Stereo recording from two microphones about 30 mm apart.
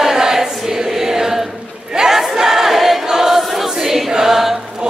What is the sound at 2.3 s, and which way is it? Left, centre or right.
Crowd, centre.